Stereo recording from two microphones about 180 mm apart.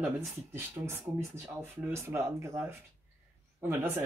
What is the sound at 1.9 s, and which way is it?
Speech, 15° right (ahead or behind).